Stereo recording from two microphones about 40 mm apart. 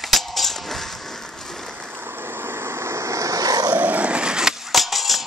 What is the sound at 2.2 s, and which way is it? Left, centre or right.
Vehicle, right.